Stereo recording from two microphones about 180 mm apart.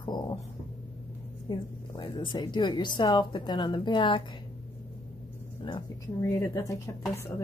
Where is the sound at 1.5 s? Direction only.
25° left (ahead or behind).